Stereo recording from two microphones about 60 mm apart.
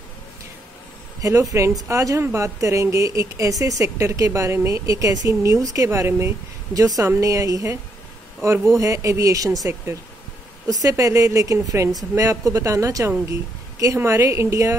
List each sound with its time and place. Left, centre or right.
1.2 s speech: right
6.7 s speech: right
10.7 s speech: right
11.5 s speech: right
13.3 s speech: right
13.9 s speech: right